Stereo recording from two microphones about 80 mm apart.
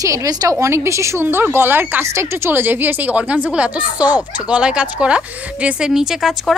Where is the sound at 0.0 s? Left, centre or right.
Right.